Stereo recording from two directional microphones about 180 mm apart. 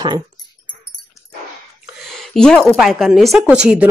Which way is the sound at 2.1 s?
5° left (ahead or behind).